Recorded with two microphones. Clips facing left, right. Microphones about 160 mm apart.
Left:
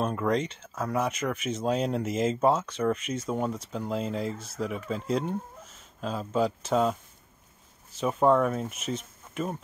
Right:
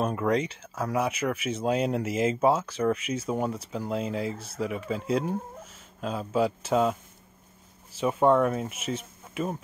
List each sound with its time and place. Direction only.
0.0 s speech: 5° right (ahead or behind)